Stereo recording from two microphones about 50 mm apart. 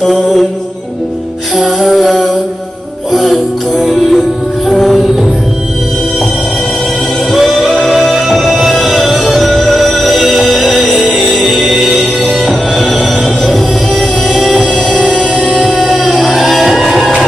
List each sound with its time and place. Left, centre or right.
0.0 s music: centre
1.9 s music: centre
3.8 s music: centre
7.2 s music: centre
10.8 s music: right
11.3 s music: centre